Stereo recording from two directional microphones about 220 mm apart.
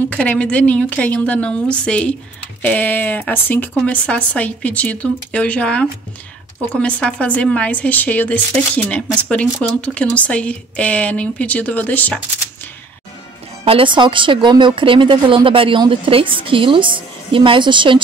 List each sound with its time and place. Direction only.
0.1 s a woman's voice: 5° left (ahead or behind)
13.7 s speech: 25° right (ahead or behind)